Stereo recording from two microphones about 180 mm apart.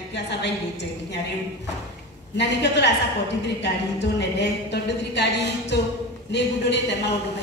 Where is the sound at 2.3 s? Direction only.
70° left (ahead or behind).